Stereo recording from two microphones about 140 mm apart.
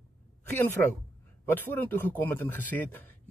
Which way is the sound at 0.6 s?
20° left (ahead or behind).